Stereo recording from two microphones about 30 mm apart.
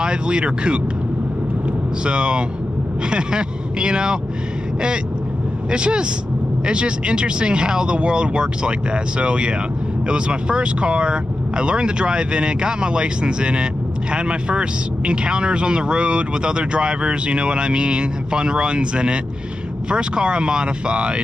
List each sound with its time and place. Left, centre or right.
0.0 s speech: right
2.0 s speech: right
5.7 s speech: right